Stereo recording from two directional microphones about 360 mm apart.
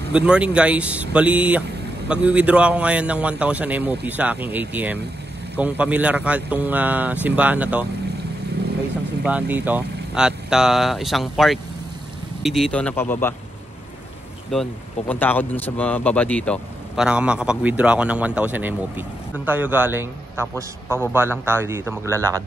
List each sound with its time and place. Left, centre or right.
0.1 s speech: centre
9.2 s speech: centre
14.5 s a man's voice: centre